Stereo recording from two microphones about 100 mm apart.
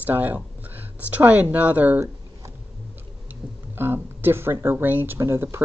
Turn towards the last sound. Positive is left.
turn(degrees=-25)  # may be behind; listen again after turning